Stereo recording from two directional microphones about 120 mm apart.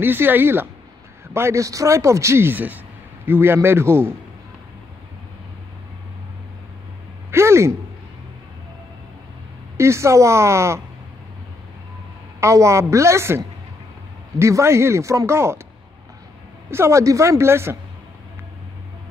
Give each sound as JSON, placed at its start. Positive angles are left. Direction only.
{"t": 0.0, "sound": "a man's voice", "side_deg": -15}
{"t": 7.2, "sound": "a sound", "side_deg": -20}
{"t": 9.8, "sound": "a man's voice", "side_deg": -25}
{"t": 12.4, "sound": "a man's voice", "side_deg": -25}
{"t": 16.7, "sound": "a man's voice", "side_deg": -25}